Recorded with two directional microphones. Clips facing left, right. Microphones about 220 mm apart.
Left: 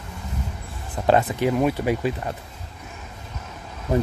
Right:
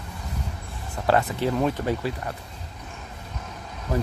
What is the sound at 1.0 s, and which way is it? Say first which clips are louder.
Speech: left 3 dB; 15° left (ahead or behind).